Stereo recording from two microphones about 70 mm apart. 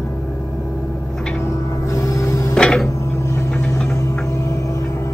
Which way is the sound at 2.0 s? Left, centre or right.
Left.